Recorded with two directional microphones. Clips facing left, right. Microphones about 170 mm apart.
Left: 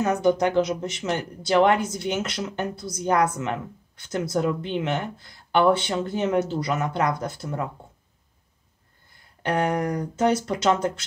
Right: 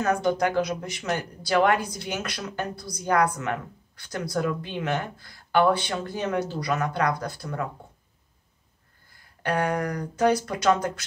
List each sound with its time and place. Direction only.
0.0 s speech: 20° left (ahead or behind)
9.1 s speech: 25° left (ahead or behind)